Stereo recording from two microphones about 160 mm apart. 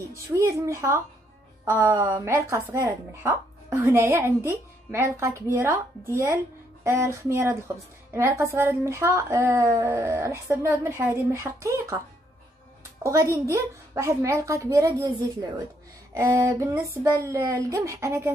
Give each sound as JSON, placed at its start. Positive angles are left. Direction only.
{"t": 0.1, "sound": "a woman's voice", "side_deg": -20}
{"t": 13.0, "sound": "a woman's voice", "side_deg": -20}